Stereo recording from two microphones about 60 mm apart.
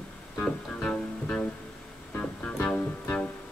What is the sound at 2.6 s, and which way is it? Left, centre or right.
Music, left.